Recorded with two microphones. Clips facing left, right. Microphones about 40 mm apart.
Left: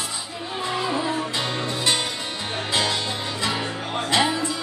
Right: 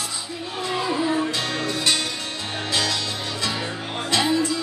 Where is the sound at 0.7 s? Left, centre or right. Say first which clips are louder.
Right 2 dB; centre.